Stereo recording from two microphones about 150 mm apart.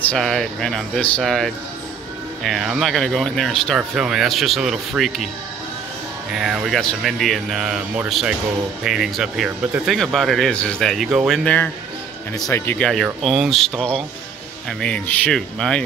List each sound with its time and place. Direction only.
0.1 s speech: 5° left (ahead or behind)
6.3 s speech: 5° right (ahead or behind); by 12.7 s 15° left (ahead or behind)
12.7 s speech: 5° left (ahead or behind)